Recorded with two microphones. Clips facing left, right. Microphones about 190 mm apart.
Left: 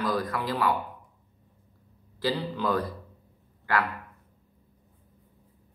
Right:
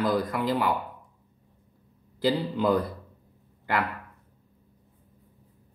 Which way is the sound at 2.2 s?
20° right (ahead or behind).